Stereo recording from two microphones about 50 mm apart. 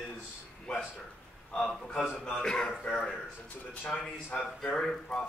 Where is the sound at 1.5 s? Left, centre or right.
Centre.